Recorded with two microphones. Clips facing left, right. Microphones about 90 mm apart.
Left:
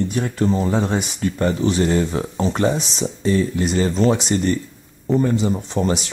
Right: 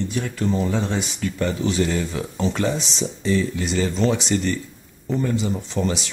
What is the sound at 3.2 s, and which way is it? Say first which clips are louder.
Speech: left 3 dB; 40° left (ahead or behind).